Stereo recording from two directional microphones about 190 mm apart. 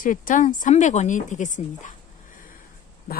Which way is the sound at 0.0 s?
45° left (ahead or behind).